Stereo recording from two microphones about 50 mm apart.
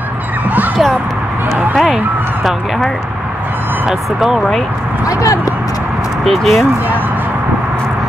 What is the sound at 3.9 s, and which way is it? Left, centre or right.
Speech, centre.